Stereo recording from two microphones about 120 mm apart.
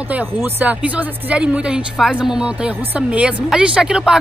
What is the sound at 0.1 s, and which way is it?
Speech, 15° right (ahead or behind).